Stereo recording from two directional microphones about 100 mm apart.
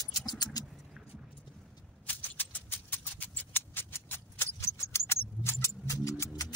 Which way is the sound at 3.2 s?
20° left (ahead or behind).